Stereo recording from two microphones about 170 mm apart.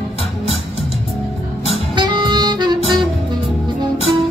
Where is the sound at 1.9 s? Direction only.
25° right (ahead or behind).